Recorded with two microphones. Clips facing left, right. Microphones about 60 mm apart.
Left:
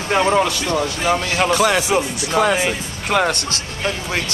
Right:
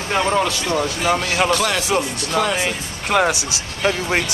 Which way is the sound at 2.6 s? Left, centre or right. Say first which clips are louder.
Left 2 dB; centre.